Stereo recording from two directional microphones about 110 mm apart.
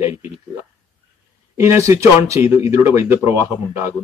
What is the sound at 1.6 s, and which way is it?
Speech, 25° right (ahead or behind).